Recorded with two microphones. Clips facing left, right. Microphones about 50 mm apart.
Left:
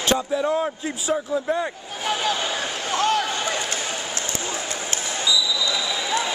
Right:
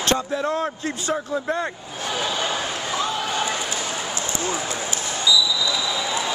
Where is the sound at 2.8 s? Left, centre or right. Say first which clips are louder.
Left 7 dB; left.